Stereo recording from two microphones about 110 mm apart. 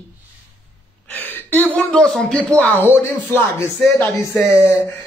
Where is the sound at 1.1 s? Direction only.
15° left (ahead or behind).